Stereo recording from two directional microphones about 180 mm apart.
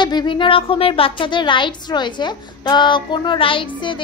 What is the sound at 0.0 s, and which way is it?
A woman's voice, 25° left (ahead or behind).